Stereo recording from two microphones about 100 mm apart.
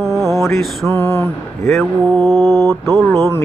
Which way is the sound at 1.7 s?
Centre (ahead or behind).